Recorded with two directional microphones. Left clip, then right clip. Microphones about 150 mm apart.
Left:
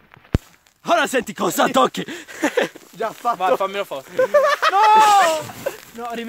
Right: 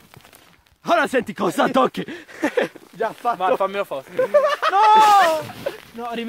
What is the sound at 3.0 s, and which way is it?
Speech, 40° left (ahead or behind).